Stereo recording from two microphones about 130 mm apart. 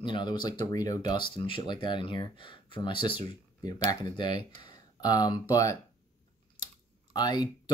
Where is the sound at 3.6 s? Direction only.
30° left (ahead or behind).